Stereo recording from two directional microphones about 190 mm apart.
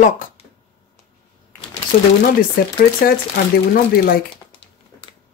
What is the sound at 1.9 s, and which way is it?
Speech, 45° left (ahead or behind).